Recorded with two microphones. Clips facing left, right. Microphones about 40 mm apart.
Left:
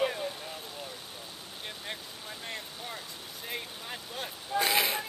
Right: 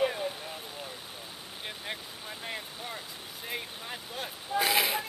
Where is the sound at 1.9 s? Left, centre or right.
Centre.